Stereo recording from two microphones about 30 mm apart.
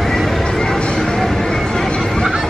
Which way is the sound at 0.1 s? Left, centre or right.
Centre.